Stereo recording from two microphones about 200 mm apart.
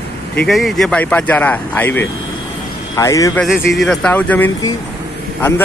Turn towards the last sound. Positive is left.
turn(degrees=10)  # may be behind; listen again after turning